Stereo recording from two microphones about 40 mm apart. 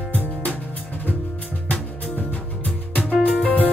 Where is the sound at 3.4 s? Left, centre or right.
Left.